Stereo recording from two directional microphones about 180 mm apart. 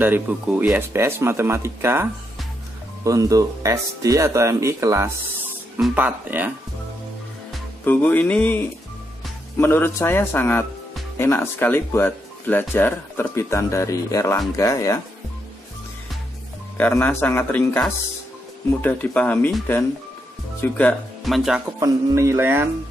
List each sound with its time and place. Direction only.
0.0 s speech: 10° right (ahead or behind)
7.8 s speech: 10° left (ahead or behind)
16.7 s speech: 10° left (ahead or behind)
21.7 s speech: 15° right (ahead or behind)